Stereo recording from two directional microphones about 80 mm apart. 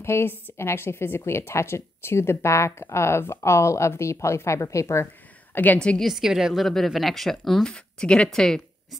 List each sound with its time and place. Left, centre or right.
0.0 s a woman's voice: left
5.0 s a sound: left
5.8 s speech: centre
6.0 s speech: centre